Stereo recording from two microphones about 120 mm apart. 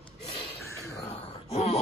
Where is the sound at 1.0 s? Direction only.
60° left (ahead or behind).